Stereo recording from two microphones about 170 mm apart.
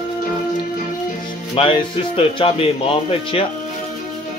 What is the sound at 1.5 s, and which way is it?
Speech, 30° left (ahead or behind).